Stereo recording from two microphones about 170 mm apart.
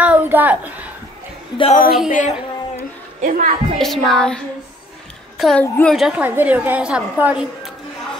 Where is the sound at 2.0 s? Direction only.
45° left (ahead or behind).